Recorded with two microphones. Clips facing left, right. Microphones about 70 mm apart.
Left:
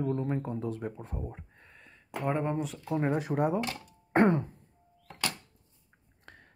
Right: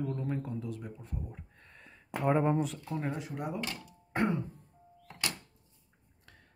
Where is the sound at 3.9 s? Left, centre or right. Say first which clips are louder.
Left 8 dB; left.